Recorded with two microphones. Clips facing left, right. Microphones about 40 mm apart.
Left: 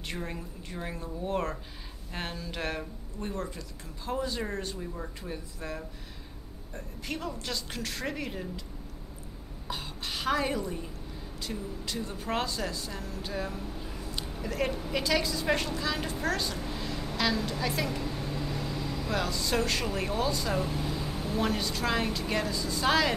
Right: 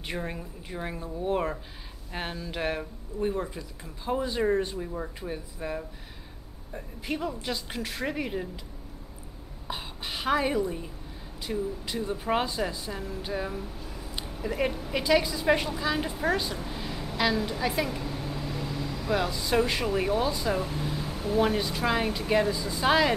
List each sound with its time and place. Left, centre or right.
0.1 s speech: centre
9.7 s a woman's voice: centre
13.7 s a sound: centre
14.4 s a woman's voice: centre